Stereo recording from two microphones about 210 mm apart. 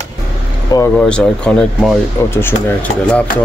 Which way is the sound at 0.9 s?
5° left (ahead or behind).